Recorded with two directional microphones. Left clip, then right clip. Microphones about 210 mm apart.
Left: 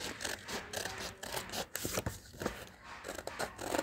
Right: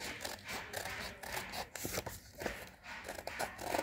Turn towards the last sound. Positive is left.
turn(degrees=5)  # may be behind; listen again after turning